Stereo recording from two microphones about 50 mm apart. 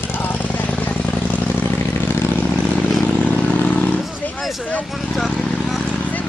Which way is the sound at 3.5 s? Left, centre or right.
Left.